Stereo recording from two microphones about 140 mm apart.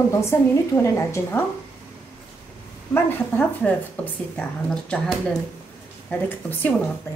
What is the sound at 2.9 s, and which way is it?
Speech, 15° left (ahead or behind).